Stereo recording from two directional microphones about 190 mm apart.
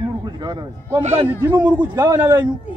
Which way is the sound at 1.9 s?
20° right (ahead or behind).